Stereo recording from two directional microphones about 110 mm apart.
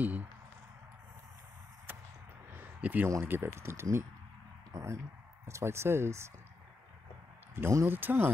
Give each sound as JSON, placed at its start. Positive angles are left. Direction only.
{"t": 0.0, "sound": "speech", "side_deg": -15}
{"t": 2.5, "sound": "a sound", "side_deg": -15}
{"t": 3.1, "sound": "speech", "side_deg": -20}
{"t": 7.5, "sound": "speech", "side_deg": -20}